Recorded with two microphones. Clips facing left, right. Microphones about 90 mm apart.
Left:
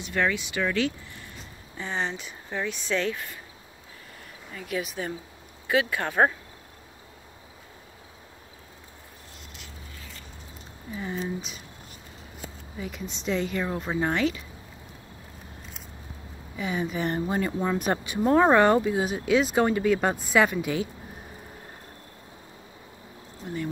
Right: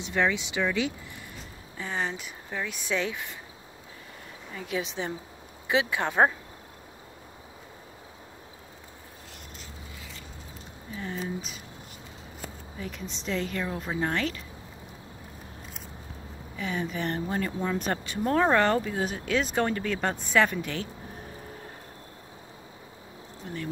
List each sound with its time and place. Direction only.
0.0 s speech: 20° right (ahead or behind)
1.8 s speech: centre (ahead or behind)
2.8 s speech: 15° right (ahead or behind)
4.6 s speech: 25° right (ahead or behind)
11.0 s speech: 5° left (ahead or behind)
12.7 s speech: 5° left (ahead or behind)
16.5 s speech: 10° left (ahead or behind)